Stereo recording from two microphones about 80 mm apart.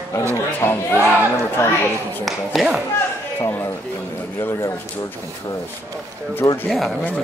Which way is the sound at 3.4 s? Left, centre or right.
Left.